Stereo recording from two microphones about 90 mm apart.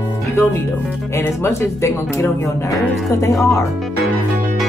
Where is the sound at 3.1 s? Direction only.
35° left (ahead or behind).